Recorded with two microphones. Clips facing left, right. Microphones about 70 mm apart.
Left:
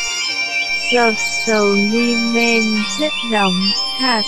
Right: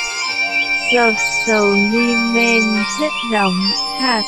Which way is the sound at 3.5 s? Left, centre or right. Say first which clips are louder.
Right 1 dB; right.